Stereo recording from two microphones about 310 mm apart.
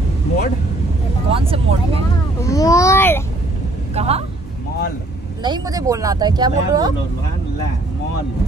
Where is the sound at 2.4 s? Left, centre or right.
Centre.